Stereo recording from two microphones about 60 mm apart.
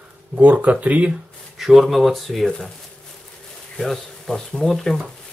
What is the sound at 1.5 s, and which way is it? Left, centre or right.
Speech, centre.